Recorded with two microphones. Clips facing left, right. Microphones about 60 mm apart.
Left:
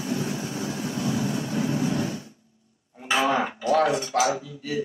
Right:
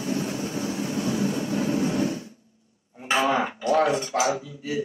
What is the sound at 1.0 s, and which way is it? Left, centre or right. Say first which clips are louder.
Vehicle: even; right.